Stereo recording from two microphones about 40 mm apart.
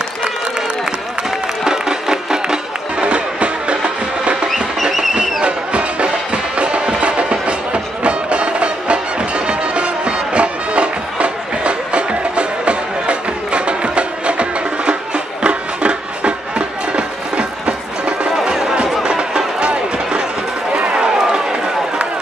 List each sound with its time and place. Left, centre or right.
1.6 s music: centre
3.1 s music: right
18.3 s music: centre
20.7 s run: right